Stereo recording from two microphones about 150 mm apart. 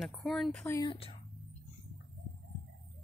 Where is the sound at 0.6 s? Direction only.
20° left (ahead or behind).